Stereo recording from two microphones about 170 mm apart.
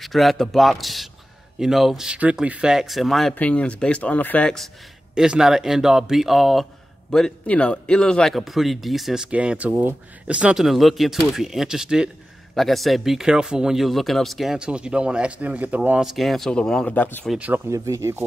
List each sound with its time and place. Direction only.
0.0 s speech: centre (ahead or behind)
17.3 s speech: 10° right (ahead or behind)